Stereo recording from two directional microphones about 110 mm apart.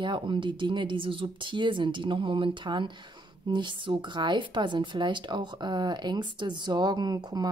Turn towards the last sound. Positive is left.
turn(degrees=-35)  # may be behind; listen again after turning